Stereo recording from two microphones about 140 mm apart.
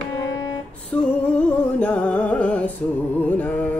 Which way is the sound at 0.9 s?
10° left (ahead or behind).